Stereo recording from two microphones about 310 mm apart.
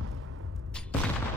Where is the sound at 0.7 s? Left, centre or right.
Centre.